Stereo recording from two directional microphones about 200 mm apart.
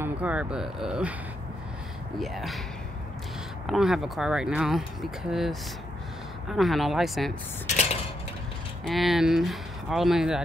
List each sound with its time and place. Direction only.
0.0 s speech: 5° right (ahead or behind)
2.1 s speech: centre (ahead or behind)
3.6 s speech: centre (ahead or behind)
7.7 s cutlery: 30° left (ahead or behind)
8.8 s speech: centre (ahead or behind)